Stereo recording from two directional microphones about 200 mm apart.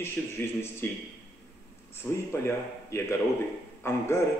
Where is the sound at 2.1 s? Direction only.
10° left (ahead or behind).